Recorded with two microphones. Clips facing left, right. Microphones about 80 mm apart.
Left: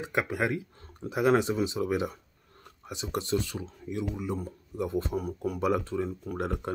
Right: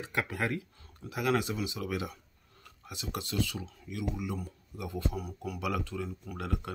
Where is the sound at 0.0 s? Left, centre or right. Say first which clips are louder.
Left 4 dB; centre.